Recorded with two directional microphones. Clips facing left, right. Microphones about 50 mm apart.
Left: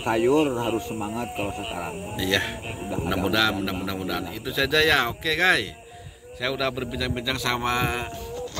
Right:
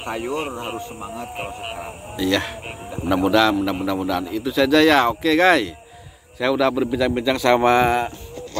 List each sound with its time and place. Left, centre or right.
0.3 s a man's voice: centre
2.1 s speech: centre
3.1 s a man's voice: centre
7.5 s speech: right